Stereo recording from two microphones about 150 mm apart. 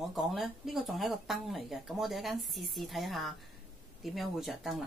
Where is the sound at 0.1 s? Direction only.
Centre (ahead or behind).